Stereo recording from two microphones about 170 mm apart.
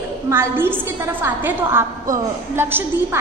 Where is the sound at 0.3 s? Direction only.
15° right (ahead or behind).